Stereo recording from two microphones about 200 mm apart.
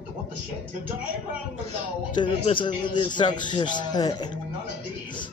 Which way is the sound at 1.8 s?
25° left (ahead or behind).